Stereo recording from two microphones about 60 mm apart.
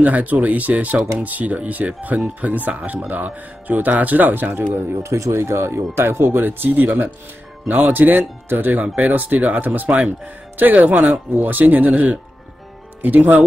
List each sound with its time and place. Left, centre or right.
0.0 s speech: right